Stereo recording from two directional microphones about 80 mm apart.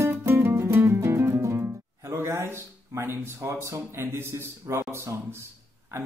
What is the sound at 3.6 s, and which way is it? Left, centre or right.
A man's voice, right.